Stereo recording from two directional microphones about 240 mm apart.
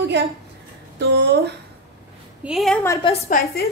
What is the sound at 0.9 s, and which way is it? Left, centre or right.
Speech, right.